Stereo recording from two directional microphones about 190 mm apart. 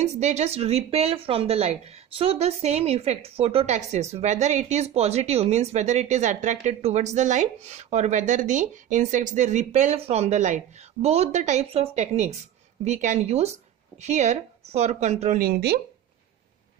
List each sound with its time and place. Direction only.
0.0 s speech: 35° right (ahead or behind); by 15.8 s 55° right (ahead or behind)